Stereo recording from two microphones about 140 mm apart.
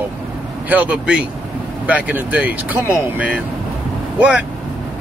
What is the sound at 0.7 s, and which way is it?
Speech, 10° right (ahead or behind).